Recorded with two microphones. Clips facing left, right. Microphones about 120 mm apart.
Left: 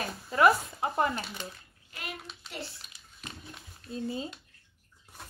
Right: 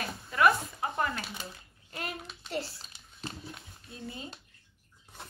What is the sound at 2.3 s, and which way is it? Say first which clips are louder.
Hands: even; centre (ahead or behind).